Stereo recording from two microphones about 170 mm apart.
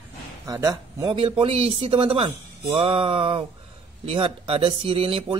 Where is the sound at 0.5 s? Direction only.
20° right (ahead or behind).